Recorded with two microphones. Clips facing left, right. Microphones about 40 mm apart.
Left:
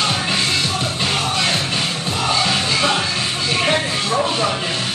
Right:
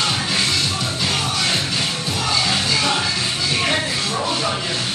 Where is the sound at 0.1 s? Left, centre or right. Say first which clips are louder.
Left 1 dB; left.